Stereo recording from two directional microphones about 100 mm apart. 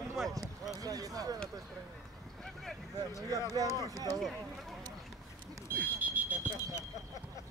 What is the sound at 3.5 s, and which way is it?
Speech, 35° right (ahead or behind).